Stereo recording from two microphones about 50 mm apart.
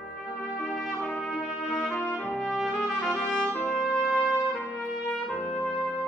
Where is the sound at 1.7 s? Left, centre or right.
Centre.